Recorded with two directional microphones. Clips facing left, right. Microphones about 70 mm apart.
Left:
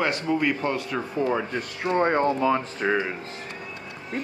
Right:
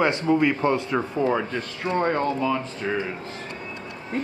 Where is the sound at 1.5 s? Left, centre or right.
Left.